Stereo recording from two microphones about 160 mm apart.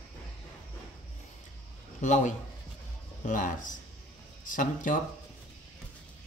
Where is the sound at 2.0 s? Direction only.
50° left (ahead or behind).